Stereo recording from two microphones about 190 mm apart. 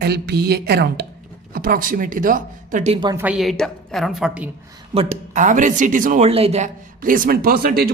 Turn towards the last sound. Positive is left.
turn(degrees=-50)  # may be behind; listen again after turning